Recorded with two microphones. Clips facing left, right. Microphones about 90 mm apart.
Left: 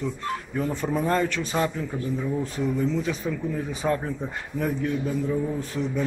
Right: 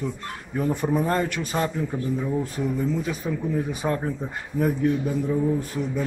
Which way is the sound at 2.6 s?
5° right (ahead or behind).